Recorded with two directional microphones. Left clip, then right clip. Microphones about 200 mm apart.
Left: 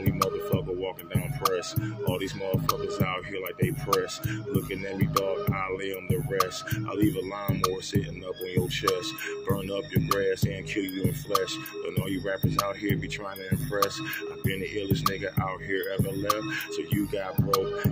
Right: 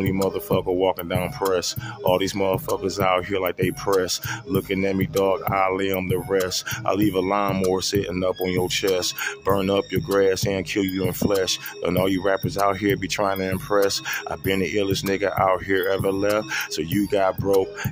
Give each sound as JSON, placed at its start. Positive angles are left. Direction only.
{"t": 0.0, "sound": "speech", "side_deg": -50}